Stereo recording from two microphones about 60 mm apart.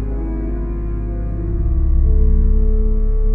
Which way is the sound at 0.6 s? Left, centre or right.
Centre.